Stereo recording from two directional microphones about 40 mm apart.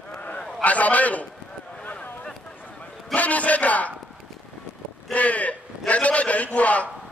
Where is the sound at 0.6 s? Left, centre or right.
Left.